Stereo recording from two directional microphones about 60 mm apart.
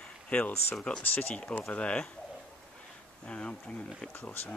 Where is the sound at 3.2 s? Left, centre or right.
Centre.